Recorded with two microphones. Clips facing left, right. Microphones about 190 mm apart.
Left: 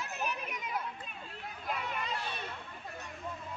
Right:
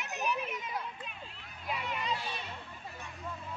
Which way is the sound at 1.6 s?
50° left (ahead or behind).